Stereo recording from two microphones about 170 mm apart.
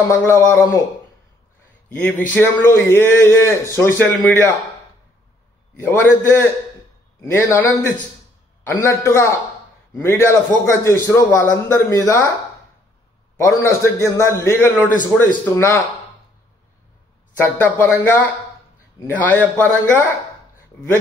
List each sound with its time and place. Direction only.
0.1 s a man's voice: 15° left (ahead or behind)
2.0 s a man's voice: 10° left (ahead or behind)
5.8 s a man's voice: 10° left (ahead or behind)
13.4 s a man's voice: 15° left (ahead or behind)
17.4 s a man's voice: 10° left (ahead or behind)
20.5 s a sound: 10° left (ahead or behind)